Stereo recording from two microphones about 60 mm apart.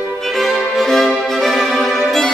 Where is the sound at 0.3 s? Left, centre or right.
Centre.